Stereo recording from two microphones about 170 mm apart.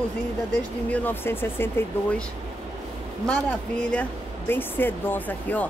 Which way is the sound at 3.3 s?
5° left (ahead or behind).